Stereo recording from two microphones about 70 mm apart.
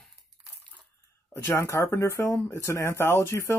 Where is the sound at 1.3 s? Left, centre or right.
Left.